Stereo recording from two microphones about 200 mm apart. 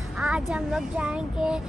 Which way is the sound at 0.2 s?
5° right (ahead or behind).